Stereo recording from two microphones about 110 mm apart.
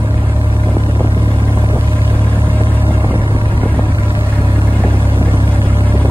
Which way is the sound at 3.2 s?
50° right (ahead or behind).